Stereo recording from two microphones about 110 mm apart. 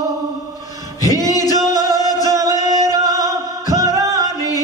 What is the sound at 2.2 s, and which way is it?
Music, 30° right (ahead or behind).